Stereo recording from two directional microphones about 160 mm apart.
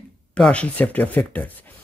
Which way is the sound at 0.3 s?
5° left (ahead or behind).